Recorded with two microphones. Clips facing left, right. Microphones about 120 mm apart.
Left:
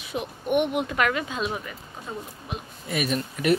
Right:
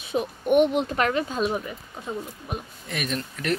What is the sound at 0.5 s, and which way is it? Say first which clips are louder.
Speech: right 4 dB; 10° left (ahead or behind).